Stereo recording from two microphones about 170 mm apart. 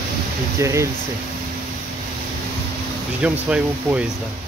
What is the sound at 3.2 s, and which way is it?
Speech, 5° right (ahead or behind).